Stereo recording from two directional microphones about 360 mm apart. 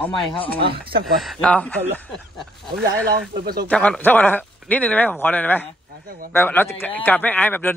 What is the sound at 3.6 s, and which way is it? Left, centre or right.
Speech, centre.